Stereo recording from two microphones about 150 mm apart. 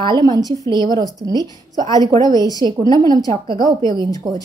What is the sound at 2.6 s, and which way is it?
Speech, 25° right (ahead or behind).